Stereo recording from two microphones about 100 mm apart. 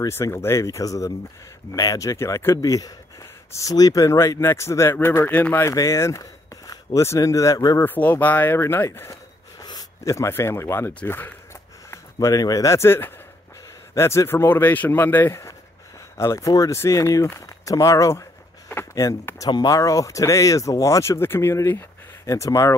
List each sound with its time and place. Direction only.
0.1 s speech: 25° left (ahead or behind)
5.6 s speech: 30° left (ahead or behind)
7.8 s speech: 15° left (ahead or behind)
11.9 s speech: 35° left (ahead or behind)